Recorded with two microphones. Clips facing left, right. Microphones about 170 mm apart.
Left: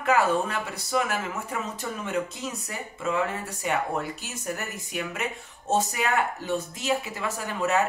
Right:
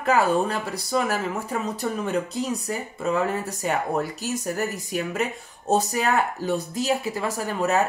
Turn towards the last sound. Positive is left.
turn(degrees=-40)  # may be behind; listen again after turning